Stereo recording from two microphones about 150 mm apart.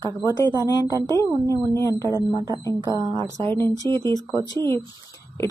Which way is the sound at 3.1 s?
20° left (ahead or behind).